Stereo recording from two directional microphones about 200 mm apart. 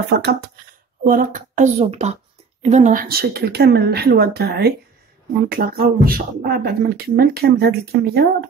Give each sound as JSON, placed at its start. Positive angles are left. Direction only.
{"t": 0.1, "sound": "speech", "side_deg": -55}
{"t": 1.0, "sound": "a woman's voice", "side_deg": -40}